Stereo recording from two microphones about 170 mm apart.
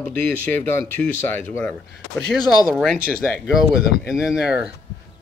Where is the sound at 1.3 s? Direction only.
10° left (ahead or behind).